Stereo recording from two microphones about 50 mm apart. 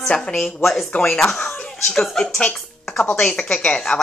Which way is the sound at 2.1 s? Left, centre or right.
Centre.